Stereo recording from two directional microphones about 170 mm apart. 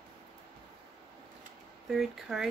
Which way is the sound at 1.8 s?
Centre (ahead or behind).